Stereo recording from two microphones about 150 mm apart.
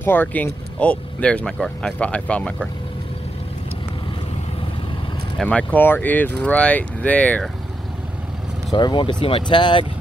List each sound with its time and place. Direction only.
0.0 s speech: 15° left (ahead or behind)
5.4 s speech: 10° left (ahead or behind)
8.7 s speech: 30° left (ahead or behind)